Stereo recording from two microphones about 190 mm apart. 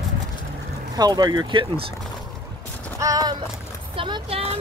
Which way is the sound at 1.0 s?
20° right (ahead or behind).